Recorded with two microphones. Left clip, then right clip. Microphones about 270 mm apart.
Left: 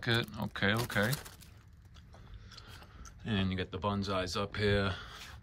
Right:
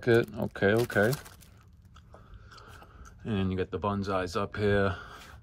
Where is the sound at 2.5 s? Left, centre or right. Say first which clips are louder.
Right 2 dB; centre.